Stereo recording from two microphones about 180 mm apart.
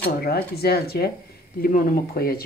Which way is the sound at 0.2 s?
60° left (ahead or behind).